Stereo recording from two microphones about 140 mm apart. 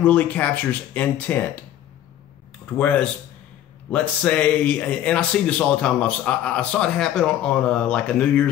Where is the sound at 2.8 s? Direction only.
10° left (ahead or behind).